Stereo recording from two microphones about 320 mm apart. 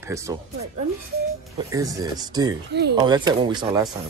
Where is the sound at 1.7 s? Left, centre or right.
Centre.